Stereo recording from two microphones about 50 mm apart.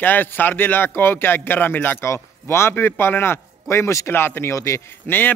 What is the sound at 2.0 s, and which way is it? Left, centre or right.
Speech, left.